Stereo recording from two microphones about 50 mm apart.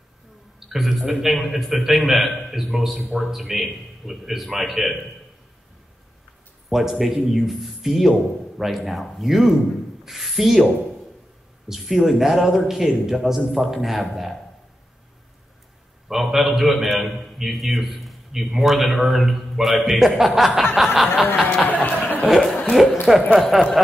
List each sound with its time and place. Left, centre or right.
0.7 s a man's voice: centre
6.7 s a man's voice: centre
16.1 s a man's voice: centre
21.8 s chuckle: left
22.3 s chuckle: centre
22.7 s a man's voice: centre
23.0 s a sound: centre
23.3 s a man's voice: centre